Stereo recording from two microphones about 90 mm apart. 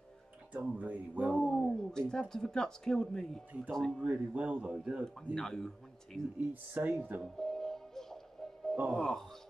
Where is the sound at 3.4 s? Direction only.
15° right (ahead or behind).